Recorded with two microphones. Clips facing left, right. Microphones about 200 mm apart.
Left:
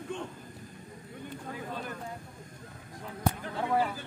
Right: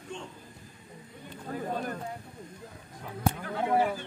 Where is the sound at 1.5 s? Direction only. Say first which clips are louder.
Right 8 dB; 45° right (ahead or behind).